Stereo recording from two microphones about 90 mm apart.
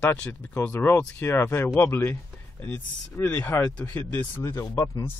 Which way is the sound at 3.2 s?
15° left (ahead or behind).